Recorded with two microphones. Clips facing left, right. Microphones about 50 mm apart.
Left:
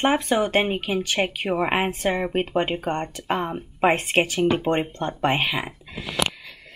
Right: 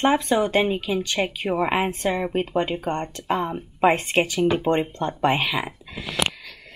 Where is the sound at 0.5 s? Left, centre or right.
Left.